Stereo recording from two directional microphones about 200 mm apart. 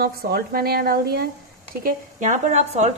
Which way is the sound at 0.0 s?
50° right (ahead or behind).